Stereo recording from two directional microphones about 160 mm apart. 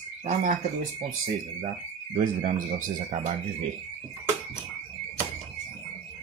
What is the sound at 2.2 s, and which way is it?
Speech, 55° right (ahead or behind).